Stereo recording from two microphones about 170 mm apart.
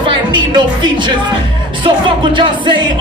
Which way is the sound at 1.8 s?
30° right (ahead or behind).